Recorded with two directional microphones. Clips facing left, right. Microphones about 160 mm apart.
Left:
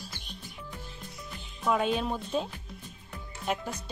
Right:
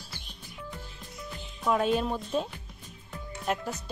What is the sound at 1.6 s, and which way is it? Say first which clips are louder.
Speech: right 2 dB; centre (ahead or behind).